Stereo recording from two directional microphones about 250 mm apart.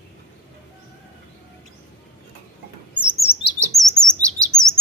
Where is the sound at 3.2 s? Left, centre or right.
Left.